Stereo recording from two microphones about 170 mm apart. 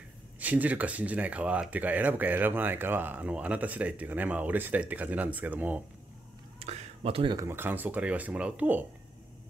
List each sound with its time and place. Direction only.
0.4 s speech: 10° right (ahead or behind)
6.6 s a sound: 35° right (ahead or behind)
7.3 s speech: 15° right (ahead or behind)